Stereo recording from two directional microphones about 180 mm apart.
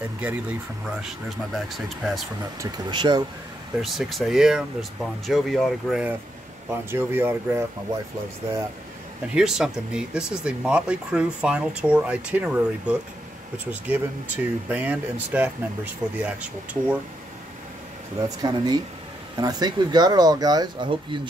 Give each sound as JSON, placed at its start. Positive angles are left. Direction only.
{"t": 0.2, "sound": "speech", "side_deg": -10}
{"t": 2.6, "sound": "speech", "side_deg": -25}
{"t": 3.8, "sound": "speech", "side_deg": 0}
{"t": 9.3, "sound": "speech", "side_deg": -5}
{"t": 18.4, "sound": "speech", "side_deg": -25}